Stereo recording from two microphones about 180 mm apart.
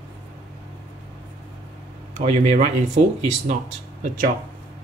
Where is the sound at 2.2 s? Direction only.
40° right (ahead or behind).